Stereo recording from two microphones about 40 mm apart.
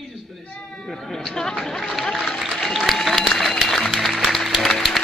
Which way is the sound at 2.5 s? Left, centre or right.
Centre.